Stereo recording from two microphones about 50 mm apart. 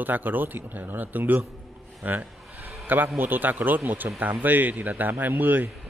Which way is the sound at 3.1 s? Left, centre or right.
Right.